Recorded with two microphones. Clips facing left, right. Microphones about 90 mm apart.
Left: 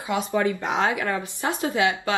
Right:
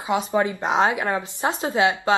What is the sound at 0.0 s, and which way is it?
A woman's voice, 20° right (ahead or behind).